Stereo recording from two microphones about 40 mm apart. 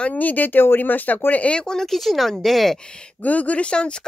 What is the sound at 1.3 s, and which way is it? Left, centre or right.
Speech, left.